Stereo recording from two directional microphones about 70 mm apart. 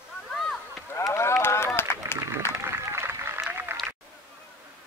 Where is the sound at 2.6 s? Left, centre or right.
Right.